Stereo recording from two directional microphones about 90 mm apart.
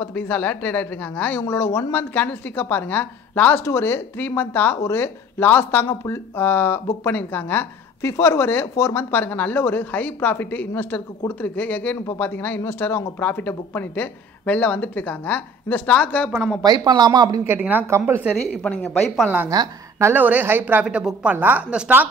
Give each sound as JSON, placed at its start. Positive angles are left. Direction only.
{"t": 0.0, "sound": "a woman's voice", "side_deg": 20}
{"t": 1.4, "sound": "a woman's voice", "side_deg": 30}
{"t": 16.3, "sound": "a woman's voice", "side_deg": -10}
{"t": 16.6, "sound": "speech", "side_deg": -50}
{"t": 17.5, "sound": "speech", "side_deg": -20}
{"t": 18.5, "sound": "a woman's voice", "side_deg": 15}
{"t": 20.0, "sound": "a woman's voice", "side_deg": -25}